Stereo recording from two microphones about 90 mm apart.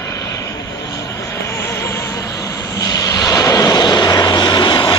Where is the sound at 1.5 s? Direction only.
30° left (ahead or behind).